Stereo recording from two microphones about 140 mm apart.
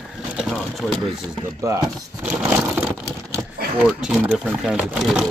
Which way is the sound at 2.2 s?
10° right (ahead or behind).